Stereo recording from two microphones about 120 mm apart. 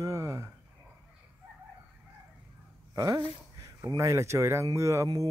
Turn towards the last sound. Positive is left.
turn(degrees=-25)  # may be behind; listen again after turning